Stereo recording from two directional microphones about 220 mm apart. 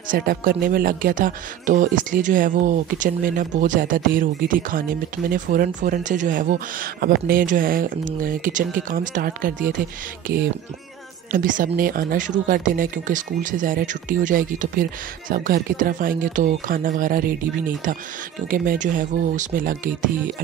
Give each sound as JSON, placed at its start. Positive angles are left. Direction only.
{"t": 0.1, "sound": "speech", "side_deg": -40}